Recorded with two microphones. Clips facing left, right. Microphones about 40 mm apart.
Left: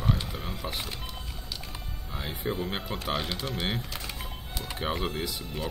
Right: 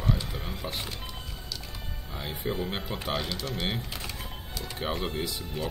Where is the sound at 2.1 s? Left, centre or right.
Centre.